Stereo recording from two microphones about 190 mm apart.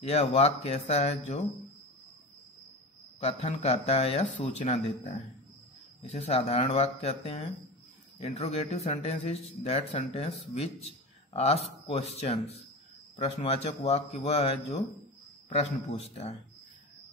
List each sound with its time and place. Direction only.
0.0 s speech: 35° left (ahead or behind)
3.2 s speech: 35° left (ahead or behind)
11.3 s speech: 35° left (ahead or behind)